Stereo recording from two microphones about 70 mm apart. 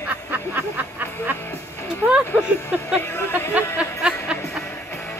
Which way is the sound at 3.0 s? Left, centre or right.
Left.